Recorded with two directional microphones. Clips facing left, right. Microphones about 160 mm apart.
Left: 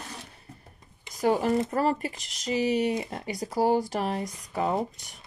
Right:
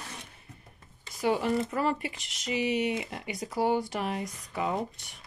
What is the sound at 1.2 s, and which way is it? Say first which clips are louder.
Speech: left 3 dB; 40° left (ahead or behind).